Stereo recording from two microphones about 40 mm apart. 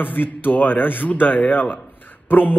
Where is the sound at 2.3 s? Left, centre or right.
Left.